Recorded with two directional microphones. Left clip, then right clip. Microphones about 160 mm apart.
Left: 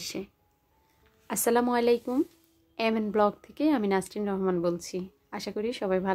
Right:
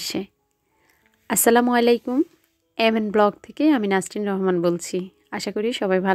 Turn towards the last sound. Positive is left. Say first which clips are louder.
# right 7 dB
turn(degrees=-40)  # may be behind; listen again after turning